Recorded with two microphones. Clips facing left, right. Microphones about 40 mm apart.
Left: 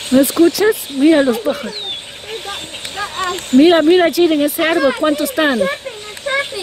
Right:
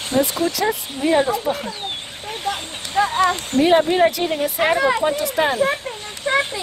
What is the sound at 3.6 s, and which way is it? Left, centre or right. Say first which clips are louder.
Speech: left 7 dB; left.